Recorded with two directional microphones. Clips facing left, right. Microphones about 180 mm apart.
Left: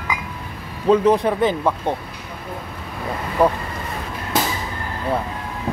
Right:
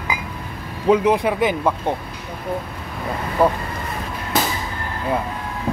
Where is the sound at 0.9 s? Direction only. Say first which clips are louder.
Left 1 dB; 10° right (ahead or behind).